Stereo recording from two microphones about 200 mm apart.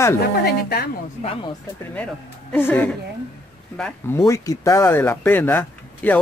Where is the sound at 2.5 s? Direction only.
10° left (ahead or behind).